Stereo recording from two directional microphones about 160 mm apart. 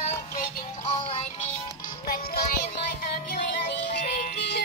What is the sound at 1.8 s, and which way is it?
Music, 60° left (ahead or behind).